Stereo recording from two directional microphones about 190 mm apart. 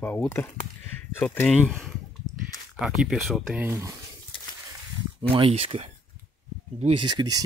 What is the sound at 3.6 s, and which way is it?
Speech, 10° right (ahead or behind).